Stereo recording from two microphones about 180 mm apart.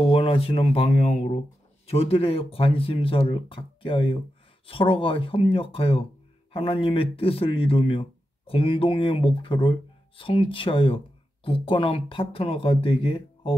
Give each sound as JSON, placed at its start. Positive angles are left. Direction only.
{"t": 0.0, "sound": "speech", "side_deg": 30}